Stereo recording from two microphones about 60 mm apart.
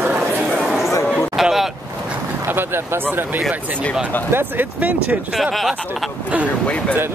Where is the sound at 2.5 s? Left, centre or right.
Right.